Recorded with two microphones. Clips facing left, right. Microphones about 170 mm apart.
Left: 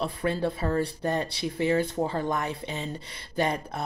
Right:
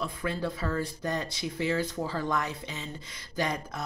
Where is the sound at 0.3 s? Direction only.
60° left (ahead or behind).